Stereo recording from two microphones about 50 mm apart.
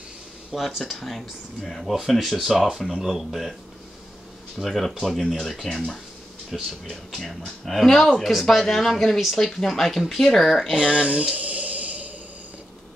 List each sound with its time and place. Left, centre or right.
0.5 s speech: centre
4.6 s speech: centre
10.8 s speech: centre
11.3 s a sound: right